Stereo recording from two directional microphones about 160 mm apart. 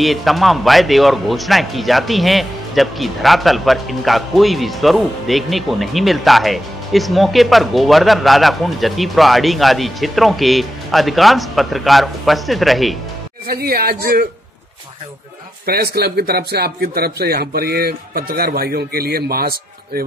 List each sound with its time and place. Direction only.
0.0 s a man's voice: centre (ahead or behind)
13.5 s speech: 70° right (ahead or behind)
15.6 s speech: 75° right (ahead or behind)